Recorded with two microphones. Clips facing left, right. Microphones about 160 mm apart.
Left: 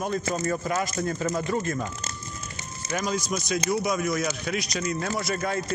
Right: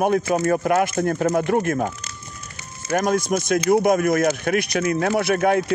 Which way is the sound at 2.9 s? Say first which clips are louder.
Right 8 dB; 55° right (ahead or behind).